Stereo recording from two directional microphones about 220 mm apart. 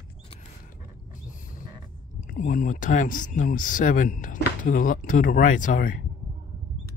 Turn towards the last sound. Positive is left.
turn(degrees=40)  # may be behind; listen again after turning